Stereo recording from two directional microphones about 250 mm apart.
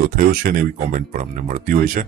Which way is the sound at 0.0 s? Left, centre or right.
Right.